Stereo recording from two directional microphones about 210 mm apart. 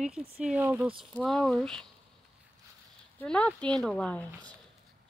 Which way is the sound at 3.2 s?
5° left (ahead or behind).